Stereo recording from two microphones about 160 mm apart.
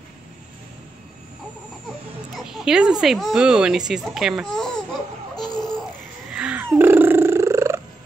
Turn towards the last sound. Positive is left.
turn(degrees=-15)  # may be behind; listen again after turning